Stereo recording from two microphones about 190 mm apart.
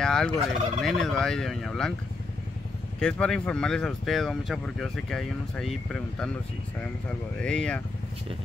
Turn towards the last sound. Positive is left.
turn(degrees=5)  # may be behind; listen again after turning